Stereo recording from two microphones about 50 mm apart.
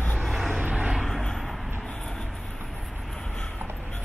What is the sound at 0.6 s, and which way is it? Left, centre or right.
Vehicle, centre.